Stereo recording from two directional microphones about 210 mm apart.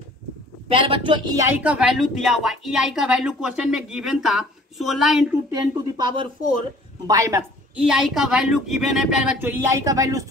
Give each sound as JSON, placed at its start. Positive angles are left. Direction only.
{"t": 0.7, "sound": "a woman's voice", "side_deg": -25}
{"t": 5.5, "sound": "speech", "side_deg": -20}
{"t": 7.8, "sound": "a woman's voice", "side_deg": 0}